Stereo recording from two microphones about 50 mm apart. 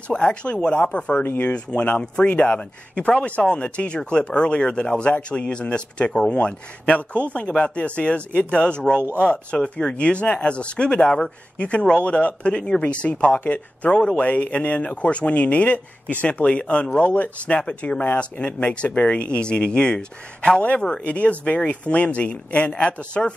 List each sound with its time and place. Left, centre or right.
0.1 s speech: centre
1.2 s speech: left
1.5 s speech: left
21.0 s speech: left